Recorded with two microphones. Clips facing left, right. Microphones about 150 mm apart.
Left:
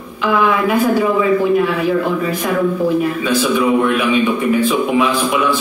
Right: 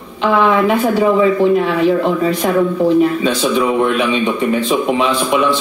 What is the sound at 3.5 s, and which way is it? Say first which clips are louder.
A man's voice: left 1 dB; 25° right (ahead or behind).